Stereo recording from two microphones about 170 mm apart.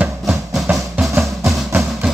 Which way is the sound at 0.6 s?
5° right (ahead or behind).